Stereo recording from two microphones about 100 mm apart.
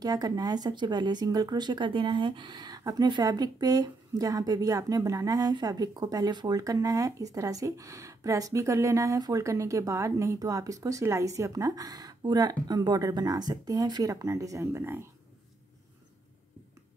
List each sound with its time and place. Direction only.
0.0 s speech: 40° right (ahead or behind)